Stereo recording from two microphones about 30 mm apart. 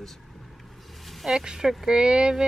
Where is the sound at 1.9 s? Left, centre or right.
Right.